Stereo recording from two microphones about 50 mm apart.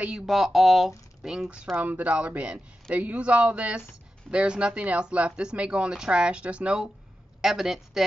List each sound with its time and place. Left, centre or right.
0.3 s speech: centre
1.2 s speech: centre
1.8 s speech: right
7.4 s speech: centre